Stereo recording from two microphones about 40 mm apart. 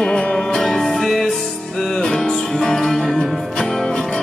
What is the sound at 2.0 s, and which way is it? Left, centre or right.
Music, centre.